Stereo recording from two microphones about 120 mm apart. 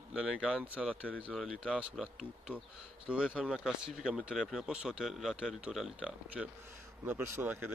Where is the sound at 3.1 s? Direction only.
10° right (ahead or behind).